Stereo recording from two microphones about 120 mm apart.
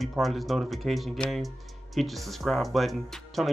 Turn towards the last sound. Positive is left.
turn(degrees=0)  # may be behind; listen again after turning